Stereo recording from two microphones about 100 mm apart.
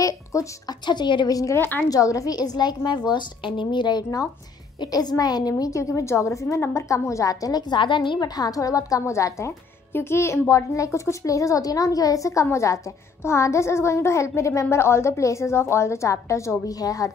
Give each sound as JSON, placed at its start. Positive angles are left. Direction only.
{"t": 0.0, "sound": "speech", "side_deg": 35}
{"t": 0.8, "sound": "a woman's voice", "side_deg": 50}
{"t": 1.6, "sound": "a child's voice", "side_deg": 20}
{"t": 1.9, "sound": "a woman's voice", "side_deg": 35}